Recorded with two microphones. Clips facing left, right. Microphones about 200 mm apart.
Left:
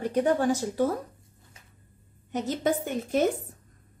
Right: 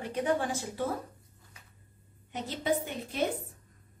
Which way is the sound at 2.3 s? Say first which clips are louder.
Left 4 dB; 45° left (ahead or behind).